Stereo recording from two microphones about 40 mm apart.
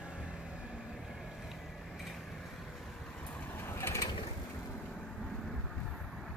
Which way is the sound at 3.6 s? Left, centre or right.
Left.